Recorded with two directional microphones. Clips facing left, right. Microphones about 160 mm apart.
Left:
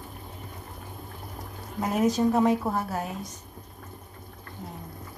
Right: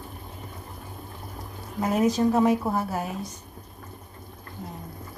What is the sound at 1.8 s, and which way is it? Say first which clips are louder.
A woman's voice: right 1 dB; centre (ahead or behind).